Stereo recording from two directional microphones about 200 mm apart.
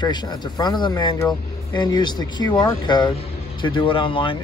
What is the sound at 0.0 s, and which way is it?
Speech, 20° left (ahead or behind).